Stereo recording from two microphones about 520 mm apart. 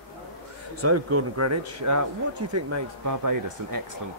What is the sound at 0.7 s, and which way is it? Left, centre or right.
Speech, right.